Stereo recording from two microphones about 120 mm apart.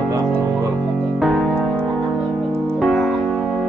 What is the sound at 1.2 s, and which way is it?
Music, centre (ahead or behind).